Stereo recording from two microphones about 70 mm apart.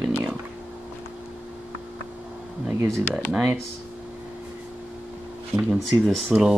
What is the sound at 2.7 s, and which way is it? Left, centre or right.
Speech, right.